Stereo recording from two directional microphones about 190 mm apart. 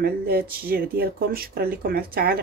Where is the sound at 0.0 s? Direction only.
55° right (ahead or behind).